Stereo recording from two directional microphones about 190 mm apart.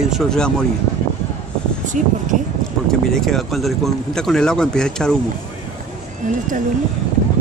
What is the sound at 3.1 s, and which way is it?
Speech, centre (ahead or behind).